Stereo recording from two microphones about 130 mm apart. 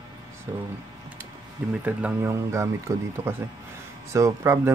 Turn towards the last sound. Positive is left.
turn(degrees=-20)  # may be behind; listen again after turning